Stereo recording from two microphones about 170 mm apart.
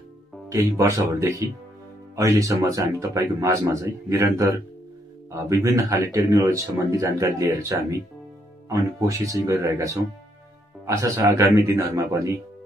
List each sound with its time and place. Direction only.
0.5 s speech: 20° right (ahead or behind)
11.0 s speech: 20° right (ahead or behind)